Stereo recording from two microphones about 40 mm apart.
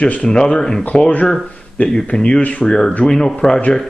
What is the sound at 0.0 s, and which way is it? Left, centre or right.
Speech, left.